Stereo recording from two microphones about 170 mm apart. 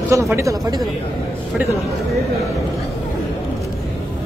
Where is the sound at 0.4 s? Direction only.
20° right (ahead or behind).